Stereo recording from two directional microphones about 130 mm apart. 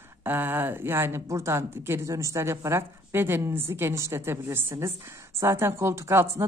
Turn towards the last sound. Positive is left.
turn(degrees=-20)  # may be behind; listen again after turning